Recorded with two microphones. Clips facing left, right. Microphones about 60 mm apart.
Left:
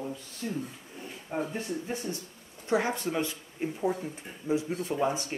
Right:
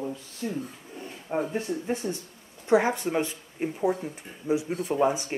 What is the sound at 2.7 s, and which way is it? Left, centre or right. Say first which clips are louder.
Speech: right 5 dB; right.